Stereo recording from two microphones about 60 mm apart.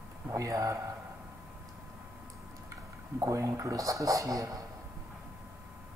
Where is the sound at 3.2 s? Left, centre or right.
Right.